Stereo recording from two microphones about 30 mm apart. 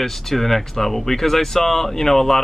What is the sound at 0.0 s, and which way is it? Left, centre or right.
Speech, centre.